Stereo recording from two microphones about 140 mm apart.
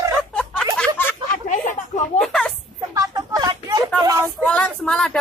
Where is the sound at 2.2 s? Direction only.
Centre (ahead or behind).